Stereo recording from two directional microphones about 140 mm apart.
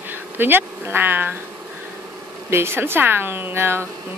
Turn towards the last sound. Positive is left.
turn(degrees=-15)  # may be behind; listen again after turning